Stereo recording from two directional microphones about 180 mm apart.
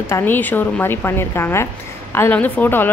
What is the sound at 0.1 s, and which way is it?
Speech, 10° left (ahead or behind).